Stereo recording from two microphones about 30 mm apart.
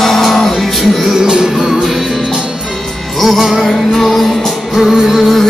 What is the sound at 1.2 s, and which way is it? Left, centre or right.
Music, right.